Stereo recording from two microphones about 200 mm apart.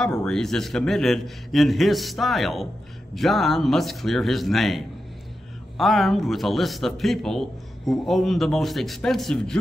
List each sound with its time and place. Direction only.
0.2 s a man's voice: centre (ahead or behind)